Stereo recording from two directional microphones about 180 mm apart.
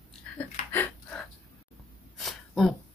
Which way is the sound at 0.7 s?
10° left (ahead or behind).